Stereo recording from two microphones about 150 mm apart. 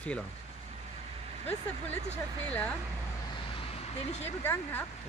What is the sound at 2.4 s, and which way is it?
Speech, 10° left (ahead or behind).